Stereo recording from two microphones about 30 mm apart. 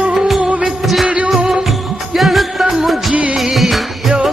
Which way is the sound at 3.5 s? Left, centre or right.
Centre.